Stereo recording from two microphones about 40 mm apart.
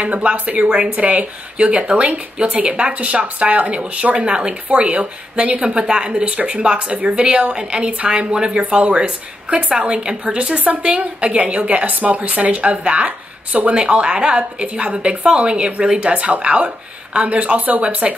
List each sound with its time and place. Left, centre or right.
0.0 s a woman's voice: right